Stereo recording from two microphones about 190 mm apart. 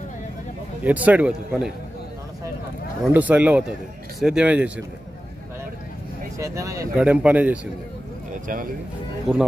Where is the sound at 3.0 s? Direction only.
10° right (ahead or behind).